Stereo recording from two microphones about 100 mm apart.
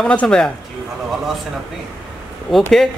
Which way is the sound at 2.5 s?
5° left (ahead or behind).